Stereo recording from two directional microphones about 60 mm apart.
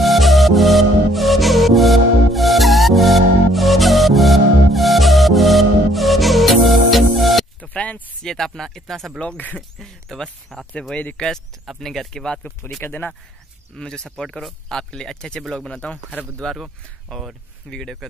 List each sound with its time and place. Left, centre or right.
0.0 s music: centre
7.6 s a sound: left
8.2 s speech: centre
10.7 s speech: centre
12.8 s speech: left
13.7 s speech: centre
17.6 s speech: centre